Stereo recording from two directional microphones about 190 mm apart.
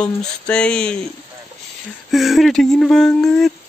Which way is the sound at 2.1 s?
Centre (ahead or behind).